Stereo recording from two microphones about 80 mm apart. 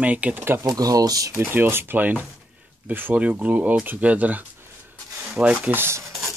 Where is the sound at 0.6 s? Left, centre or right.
Right.